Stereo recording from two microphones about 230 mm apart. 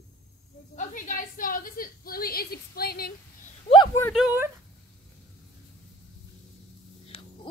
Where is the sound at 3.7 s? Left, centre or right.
Centre.